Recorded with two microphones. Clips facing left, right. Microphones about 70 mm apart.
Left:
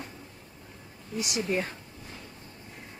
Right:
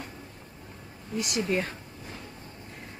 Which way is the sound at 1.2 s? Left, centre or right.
Centre.